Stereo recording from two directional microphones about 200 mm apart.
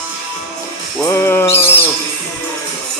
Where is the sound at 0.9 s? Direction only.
15° left (ahead or behind).